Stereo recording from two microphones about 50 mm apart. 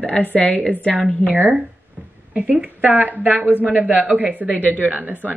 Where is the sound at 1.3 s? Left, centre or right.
Right.